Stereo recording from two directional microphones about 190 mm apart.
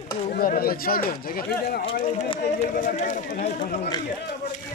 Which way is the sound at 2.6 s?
40° left (ahead or behind).